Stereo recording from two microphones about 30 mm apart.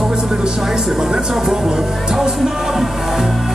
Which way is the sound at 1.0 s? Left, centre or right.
Right.